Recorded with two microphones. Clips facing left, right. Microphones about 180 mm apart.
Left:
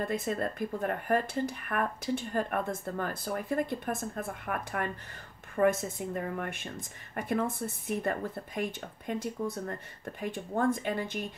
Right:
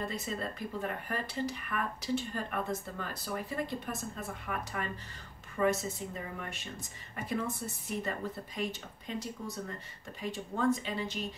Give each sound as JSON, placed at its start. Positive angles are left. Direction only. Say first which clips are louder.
{"t": 0.0, "sound": "speech", "louder": "left 6 dB", "side_deg": 50}